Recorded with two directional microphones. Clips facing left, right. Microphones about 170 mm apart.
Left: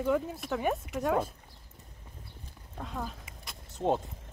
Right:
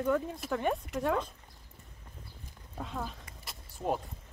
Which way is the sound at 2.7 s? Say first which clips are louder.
Even; centre (ahead or behind).